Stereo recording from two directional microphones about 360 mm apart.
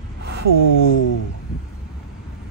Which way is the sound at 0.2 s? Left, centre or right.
Right.